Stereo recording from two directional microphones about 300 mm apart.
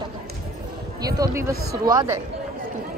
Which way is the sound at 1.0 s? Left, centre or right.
Centre.